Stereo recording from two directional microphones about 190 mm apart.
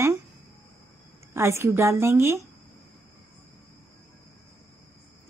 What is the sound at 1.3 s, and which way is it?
A woman's voice, 15° right (ahead or behind).